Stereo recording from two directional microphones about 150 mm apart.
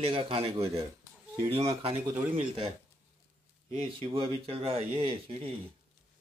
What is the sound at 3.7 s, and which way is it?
Speech, 40° right (ahead or behind).